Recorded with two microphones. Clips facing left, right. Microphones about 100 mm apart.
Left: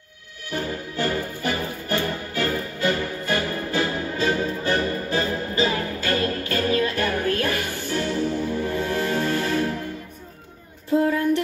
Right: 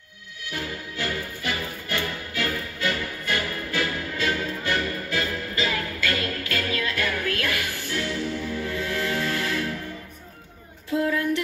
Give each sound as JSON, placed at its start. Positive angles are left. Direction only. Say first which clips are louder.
{"t": 0.5, "sound": "music", "louder": "left 5 dB", "side_deg": 35}
{"t": 11.1, "sound": "music", "louder": "left 3 dB", "side_deg": 35}